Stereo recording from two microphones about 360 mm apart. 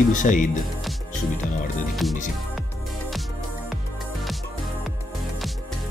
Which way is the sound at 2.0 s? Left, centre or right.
Centre.